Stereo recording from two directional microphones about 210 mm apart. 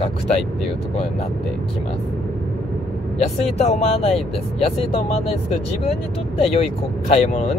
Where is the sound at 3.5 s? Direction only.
30° left (ahead or behind).